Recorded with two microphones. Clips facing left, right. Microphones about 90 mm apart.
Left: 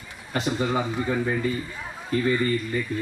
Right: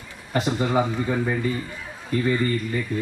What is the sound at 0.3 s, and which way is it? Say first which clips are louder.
Speech: right 2 dB; 5° right (ahead or behind).